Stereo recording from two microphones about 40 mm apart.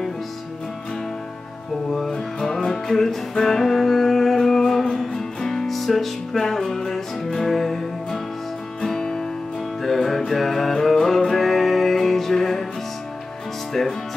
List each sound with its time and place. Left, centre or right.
1.9 s music: centre
13.7 s music: centre